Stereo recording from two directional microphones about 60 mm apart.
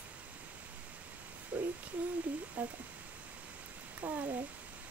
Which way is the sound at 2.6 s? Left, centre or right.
Right.